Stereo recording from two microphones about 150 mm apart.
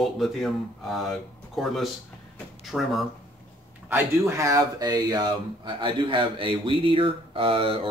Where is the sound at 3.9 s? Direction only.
20° right (ahead or behind).